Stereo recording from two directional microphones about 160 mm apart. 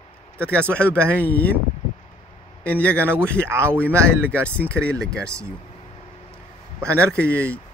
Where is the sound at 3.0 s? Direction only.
15° right (ahead or behind).